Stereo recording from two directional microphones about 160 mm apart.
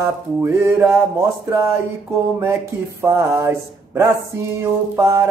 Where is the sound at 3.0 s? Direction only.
15° right (ahead or behind).